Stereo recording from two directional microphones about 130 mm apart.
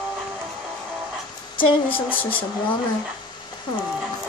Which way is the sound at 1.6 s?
40° left (ahead or behind).